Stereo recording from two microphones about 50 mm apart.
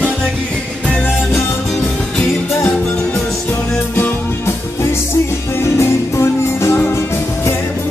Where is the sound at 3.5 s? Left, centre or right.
Left.